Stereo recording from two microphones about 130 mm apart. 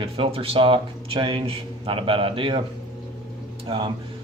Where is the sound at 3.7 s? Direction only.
45° right (ahead or behind).